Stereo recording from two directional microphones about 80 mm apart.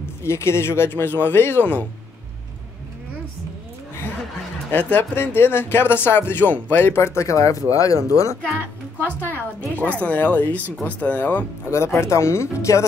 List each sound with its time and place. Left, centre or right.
0.2 s speech: left
4.6 s speech: left
8.9 s speech: left
11.7 s speech: left